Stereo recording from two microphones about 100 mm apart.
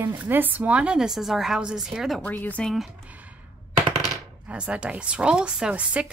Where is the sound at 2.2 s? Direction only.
15° left (ahead or behind).